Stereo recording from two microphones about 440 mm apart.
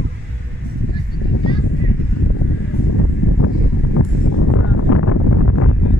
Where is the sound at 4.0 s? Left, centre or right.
Left.